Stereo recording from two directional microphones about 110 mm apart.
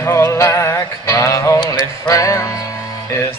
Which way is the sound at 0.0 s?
25° left (ahead or behind).